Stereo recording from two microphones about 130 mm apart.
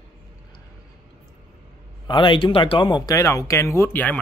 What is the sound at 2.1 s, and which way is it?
Speech, 40° left (ahead or behind).